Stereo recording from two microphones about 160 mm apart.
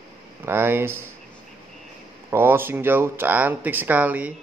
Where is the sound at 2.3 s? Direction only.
15° right (ahead or behind).